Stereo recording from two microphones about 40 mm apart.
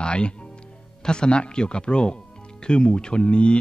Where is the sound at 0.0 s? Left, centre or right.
Left.